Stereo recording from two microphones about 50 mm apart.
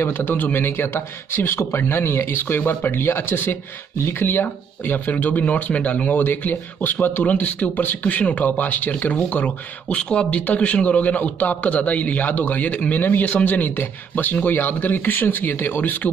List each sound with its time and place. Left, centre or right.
0.0 s a man's voice: left
9.8 s a man's voice: left